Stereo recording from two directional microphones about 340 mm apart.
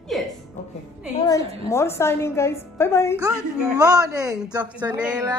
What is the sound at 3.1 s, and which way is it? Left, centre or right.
Speech, centre.